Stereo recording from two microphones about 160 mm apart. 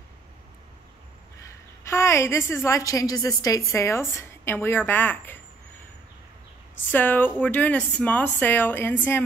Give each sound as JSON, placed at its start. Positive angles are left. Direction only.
{"t": 1.5, "sound": "a woman's voice", "side_deg": 15}
{"t": 6.9, "sound": "speech", "side_deg": 10}